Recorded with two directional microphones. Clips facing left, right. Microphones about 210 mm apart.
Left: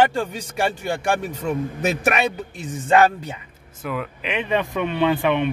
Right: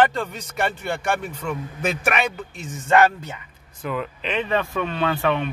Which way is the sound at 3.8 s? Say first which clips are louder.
Even; 5° left (ahead or behind).